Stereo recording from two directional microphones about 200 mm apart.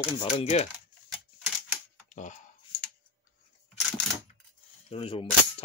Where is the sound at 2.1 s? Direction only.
40° left (ahead or behind).